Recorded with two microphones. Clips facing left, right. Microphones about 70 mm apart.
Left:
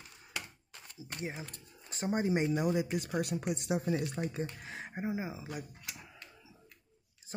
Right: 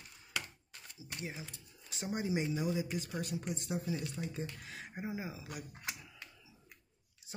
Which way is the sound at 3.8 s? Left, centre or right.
Left.